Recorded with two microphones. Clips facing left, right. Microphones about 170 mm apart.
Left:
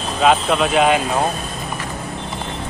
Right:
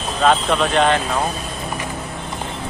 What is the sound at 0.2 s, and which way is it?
Speech, 5° left (ahead or behind).